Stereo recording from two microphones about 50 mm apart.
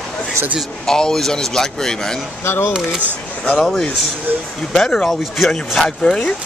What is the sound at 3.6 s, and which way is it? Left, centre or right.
Speech, centre.